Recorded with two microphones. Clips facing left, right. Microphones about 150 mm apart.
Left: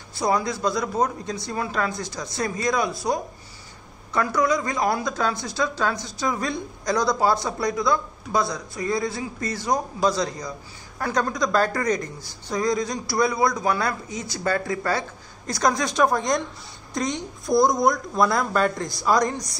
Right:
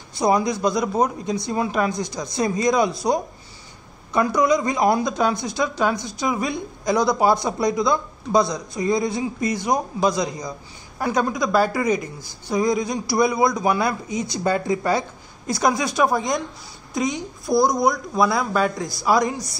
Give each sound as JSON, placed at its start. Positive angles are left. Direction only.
{"t": 0.2, "sound": "speech", "side_deg": -15}